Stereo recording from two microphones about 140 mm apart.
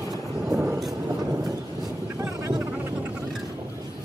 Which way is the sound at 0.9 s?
25° right (ahead or behind).